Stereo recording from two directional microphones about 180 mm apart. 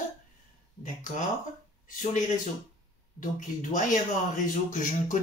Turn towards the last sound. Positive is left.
turn(degrees=45)  # may be behind; listen again after turning